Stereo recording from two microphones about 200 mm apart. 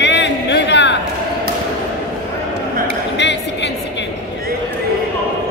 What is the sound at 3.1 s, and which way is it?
Music, 60° left (ahead or behind).